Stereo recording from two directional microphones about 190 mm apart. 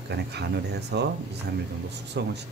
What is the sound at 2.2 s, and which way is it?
Speech, 65° right (ahead or behind).